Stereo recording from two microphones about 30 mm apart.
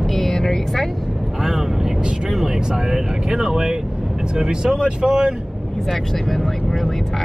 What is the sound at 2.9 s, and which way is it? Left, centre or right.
Speech, centre.